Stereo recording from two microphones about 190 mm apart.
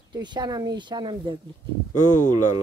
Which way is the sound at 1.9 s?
40° left (ahead or behind).